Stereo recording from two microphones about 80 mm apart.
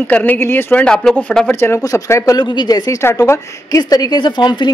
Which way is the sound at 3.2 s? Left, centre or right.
Left.